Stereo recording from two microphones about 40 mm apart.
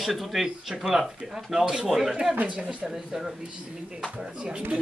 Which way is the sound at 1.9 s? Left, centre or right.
Centre.